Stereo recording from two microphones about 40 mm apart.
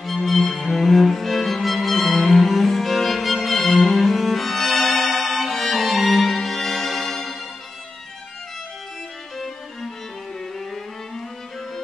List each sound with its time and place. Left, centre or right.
0.0 s music: centre